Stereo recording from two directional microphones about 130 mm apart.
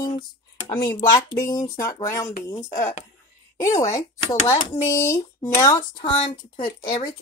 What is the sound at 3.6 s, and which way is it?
Speech, 25° left (ahead or behind).